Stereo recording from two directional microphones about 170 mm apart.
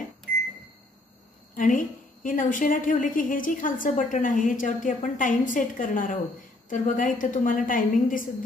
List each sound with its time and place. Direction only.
1.5 s a woman's voice: 50° left (ahead or behind)